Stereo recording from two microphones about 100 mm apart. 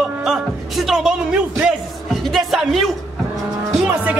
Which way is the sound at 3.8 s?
15° right (ahead or behind).